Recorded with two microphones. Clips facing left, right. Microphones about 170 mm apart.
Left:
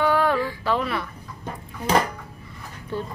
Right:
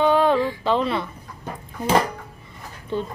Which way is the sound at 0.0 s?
20° right (ahead or behind).